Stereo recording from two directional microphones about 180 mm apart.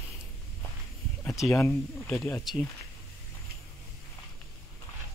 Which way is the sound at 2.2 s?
15° left (ahead or behind).